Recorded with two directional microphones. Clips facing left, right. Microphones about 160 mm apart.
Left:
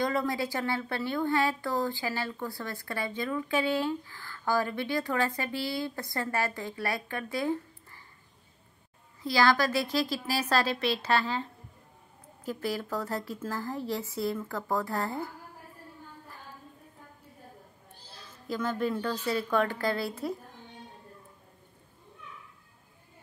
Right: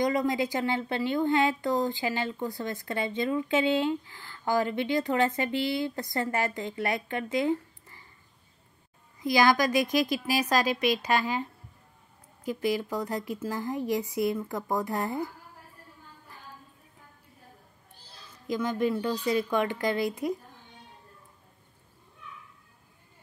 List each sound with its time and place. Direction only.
0.0 s a woman's voice: 15° right (ahead or behind)
9.2 s speech: 15° right (ahead or behind)
12.4 s speech: 15° right (ahead or behind)
18.5 s speech: 15° right (ahead or behind)